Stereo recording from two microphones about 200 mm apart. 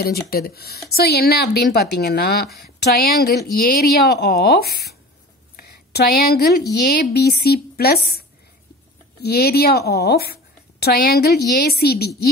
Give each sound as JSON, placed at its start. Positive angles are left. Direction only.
{"t": 0.0, "sound": "a woman's voice", "side_deg": 50}